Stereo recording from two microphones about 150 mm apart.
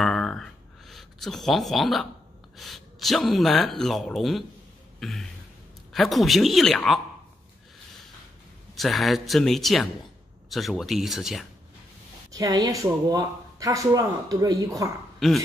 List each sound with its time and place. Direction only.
0.0 s a sound: 5° left (ahead or behind)
2.5 s speech: centre (ahead or behind)
8.7 s speech: centre (ahead or behind)
12.3 s speech: 25° right (ahead or behind)
15.1 s speech: centre (ahead or behind)